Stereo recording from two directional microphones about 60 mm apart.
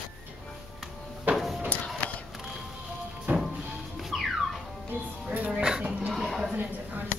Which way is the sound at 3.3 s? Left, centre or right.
Right.